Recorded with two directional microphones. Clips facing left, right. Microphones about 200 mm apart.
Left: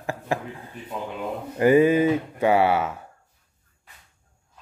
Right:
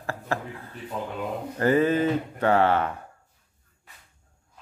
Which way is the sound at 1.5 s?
10° left (ahead or behind).